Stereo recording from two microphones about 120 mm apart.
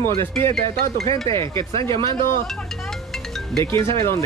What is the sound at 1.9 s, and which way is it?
Speech, 45° right (ahead or behind).